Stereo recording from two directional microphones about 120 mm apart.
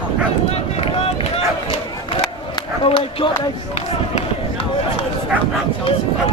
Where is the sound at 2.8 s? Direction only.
45° left (ahead or behind).